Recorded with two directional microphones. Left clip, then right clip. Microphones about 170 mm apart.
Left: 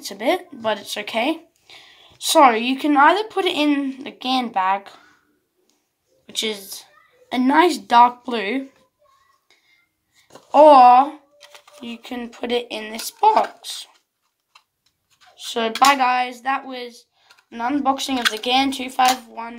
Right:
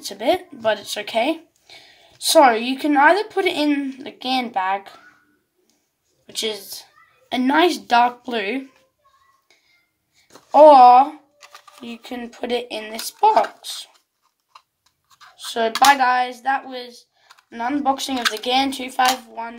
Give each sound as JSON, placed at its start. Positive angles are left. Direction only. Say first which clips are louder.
{"t": 0.0, "sound": "speech", "louder": "right 1 dB", "side_deg": 0}
{"t": 6.2, "sound": "a woman's voice", "louder": "left 1 dB", "side_deg": 10}
{"t": 10.2, "sound": "speech", "louder": "right 1 dB", "side_deg": 5}
{"t": 15.3, "sound": "speech", "louder": "right 1 dB", "side_deg": 10}